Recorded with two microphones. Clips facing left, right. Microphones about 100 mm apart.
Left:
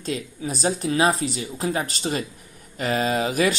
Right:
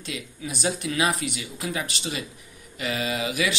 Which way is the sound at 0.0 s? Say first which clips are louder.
Left 6 dB; 40° left (ahead or behind).